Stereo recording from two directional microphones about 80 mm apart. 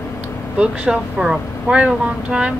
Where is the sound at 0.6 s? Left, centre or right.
Centre.